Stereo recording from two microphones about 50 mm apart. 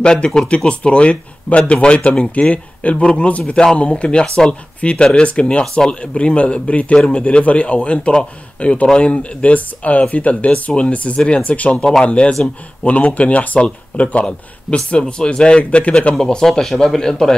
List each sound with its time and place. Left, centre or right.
0.0 s speech: centre
3.5 s speech: centre
11.1 s speech: centre
11.4 s speech: left
11.7 s speech: centre
16.2 s speech: centre